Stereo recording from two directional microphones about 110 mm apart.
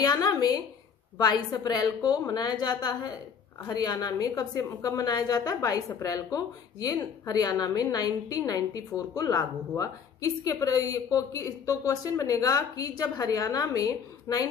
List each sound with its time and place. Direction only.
0.0 s a woman's voice: 35° left (ahead or behind)